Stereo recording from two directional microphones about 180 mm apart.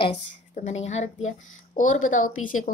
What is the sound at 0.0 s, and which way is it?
A woman's voice, 40° left (ahead or behind).